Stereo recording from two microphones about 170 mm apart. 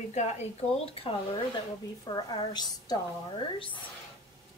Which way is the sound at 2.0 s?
25° left (ahead or behind).